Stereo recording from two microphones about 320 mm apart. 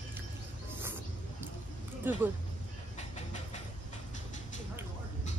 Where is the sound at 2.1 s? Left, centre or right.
Centre.